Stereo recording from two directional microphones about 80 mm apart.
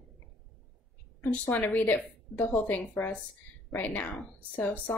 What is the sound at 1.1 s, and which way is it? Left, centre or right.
A woman's voice, left.